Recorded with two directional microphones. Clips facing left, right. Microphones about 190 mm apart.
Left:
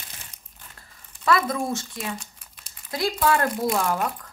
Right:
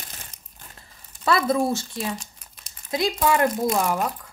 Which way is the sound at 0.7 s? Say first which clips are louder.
Right 1 dB; 30° right (ahead or behind).